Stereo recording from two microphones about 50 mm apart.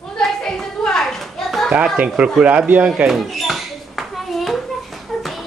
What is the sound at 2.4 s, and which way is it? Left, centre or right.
Speech, right.